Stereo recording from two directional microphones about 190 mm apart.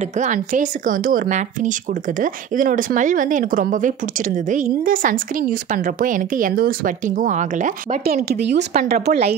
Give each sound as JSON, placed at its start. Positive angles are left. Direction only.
{"t": 0.2, "sound": "speech", "side_deg": -40}
{"t": 8.3, "sound": "speech", "side_deg": -60}